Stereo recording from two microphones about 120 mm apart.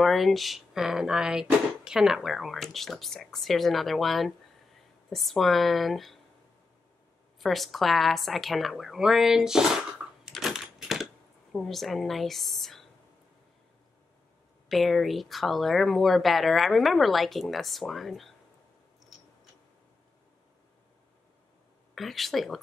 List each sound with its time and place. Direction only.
0.0 s speech: centre (ahead or behind)
7.3 s speech: centre (ahead or behind)
10.2 s typewriter: 5° right (ahead or behind)
11.5 s speech: centre (ahead or behind)
14.7 s speech: centre (ahead or behind)
21.9 s speech: centre (ahead or behind)